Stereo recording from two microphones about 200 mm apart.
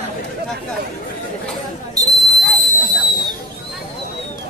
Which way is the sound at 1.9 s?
20° right (ahead or behind).